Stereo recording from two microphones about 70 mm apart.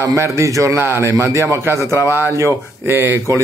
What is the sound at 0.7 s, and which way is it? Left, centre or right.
Speech, right.